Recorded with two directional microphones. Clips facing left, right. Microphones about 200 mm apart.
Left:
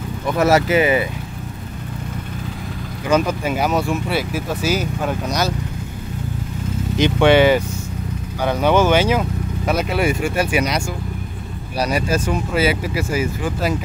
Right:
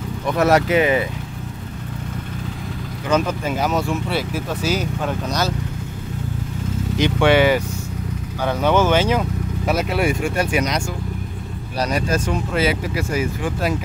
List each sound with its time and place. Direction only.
0.3 s speech: 5° left (ahead or behind)
3.1 s speech: 10° left (ahead or behind)
7.0 s speech: 25° left (ahead or behind)
8.4 s speech: 15° left (ahead or behind)
9.7 s speech: centre (ahead or behind)